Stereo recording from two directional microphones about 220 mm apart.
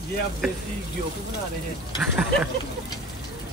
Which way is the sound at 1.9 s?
5° right (ahead or behind).